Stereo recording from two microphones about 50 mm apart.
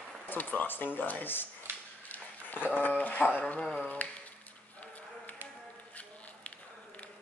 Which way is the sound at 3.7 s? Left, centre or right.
Left.